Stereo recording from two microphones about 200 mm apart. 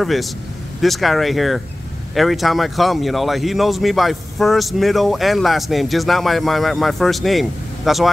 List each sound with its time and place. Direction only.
0.0 s speech: centre (ahead or behind)